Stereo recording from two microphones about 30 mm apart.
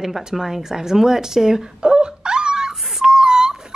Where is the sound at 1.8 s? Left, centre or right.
Right.